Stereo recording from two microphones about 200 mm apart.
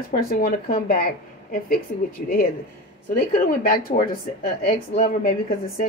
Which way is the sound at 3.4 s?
45° left (ahead or behind).